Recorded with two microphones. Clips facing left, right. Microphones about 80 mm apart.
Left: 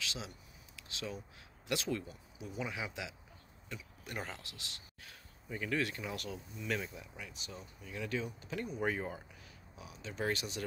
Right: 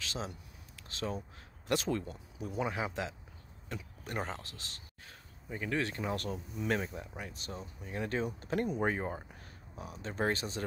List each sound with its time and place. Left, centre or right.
0.0 s a sound: right
1.7 s a man's voice: right
5.5 s speech: right
8.7 s speech: right
9.3 s speech: right